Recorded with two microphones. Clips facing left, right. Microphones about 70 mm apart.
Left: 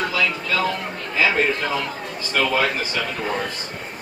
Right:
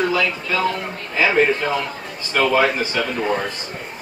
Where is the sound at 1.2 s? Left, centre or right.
Centre.